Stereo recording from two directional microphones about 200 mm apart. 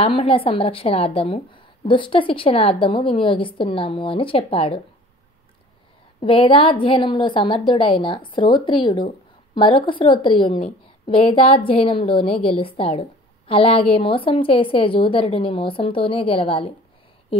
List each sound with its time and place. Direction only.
0.0 s a woman's voice: 30° left (ahead or behind)
6.2 s a woman's voice: 25° left (ahead or behind)
17.3 s a sound: 30° left (ahead or behind)